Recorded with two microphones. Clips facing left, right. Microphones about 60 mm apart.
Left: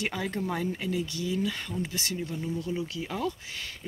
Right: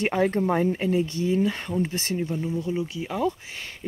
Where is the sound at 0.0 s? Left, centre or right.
Right.